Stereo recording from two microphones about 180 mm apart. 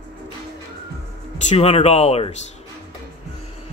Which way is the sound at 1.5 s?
35° left (ahead or behind).